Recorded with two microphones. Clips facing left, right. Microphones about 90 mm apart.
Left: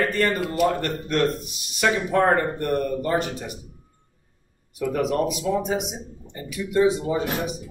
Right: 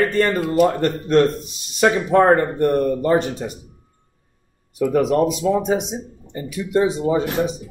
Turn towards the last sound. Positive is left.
turn(degrees=-30)  # may be behind; listen again after turning